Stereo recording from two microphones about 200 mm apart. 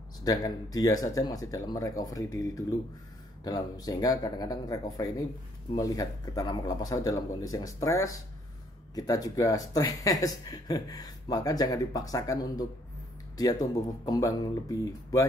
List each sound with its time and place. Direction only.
0.2 s speech: 20° left (ahead or behind)
14.0 s speech: 20° left (ahead or behind)